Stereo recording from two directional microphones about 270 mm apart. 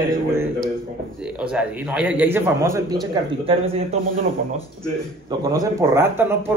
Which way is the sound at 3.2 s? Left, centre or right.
Right.